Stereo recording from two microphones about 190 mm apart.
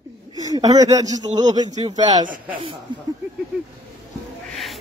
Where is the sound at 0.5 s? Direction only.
20° right (ahead or behind).